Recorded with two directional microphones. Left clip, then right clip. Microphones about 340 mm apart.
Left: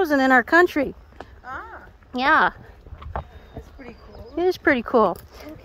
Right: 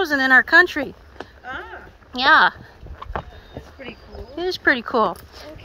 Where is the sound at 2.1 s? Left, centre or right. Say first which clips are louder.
Right 4 dB; centre.